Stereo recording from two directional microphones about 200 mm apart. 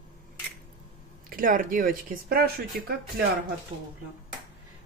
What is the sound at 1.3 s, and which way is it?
Speech, 45° right (ahead or behind).